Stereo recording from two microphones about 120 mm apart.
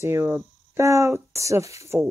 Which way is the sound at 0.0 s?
20° right (ahead or behind).